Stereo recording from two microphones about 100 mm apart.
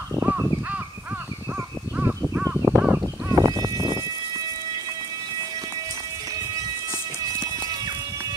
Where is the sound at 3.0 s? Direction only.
35° right (ahead or behind).